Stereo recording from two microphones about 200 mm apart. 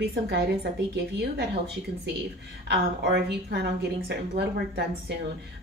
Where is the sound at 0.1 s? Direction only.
55° right (ahead or behind).